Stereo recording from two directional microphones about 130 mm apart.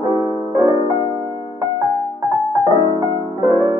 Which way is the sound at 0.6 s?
20° right (ahead or behind).